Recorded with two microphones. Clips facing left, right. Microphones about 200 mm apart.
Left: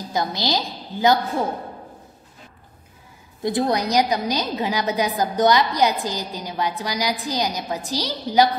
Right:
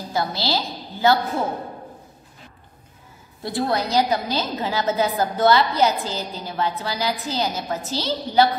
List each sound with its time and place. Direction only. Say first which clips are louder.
0.1 s a woman's voice: left 1 dB; 15° left (ahead or behind)
3.4 s a woman's voice: left 2 dB; 20° left (ahead or behind)